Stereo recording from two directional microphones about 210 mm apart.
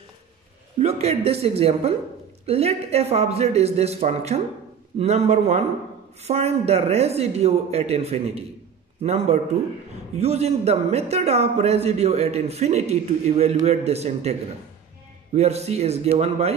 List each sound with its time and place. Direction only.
0.7 s speech: 30° right (ahead or behind)
15.3 s speech: 30° right (ahead or behind)